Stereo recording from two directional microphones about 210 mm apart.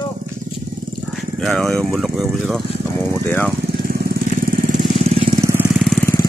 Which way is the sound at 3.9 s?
45° right (ahead or behind).